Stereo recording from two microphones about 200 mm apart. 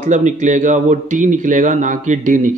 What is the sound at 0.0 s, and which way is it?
Speech, 40° right (ahead or behind).